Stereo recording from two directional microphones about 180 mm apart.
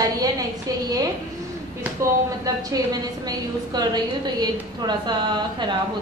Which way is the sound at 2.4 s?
20° right (ahead or behind).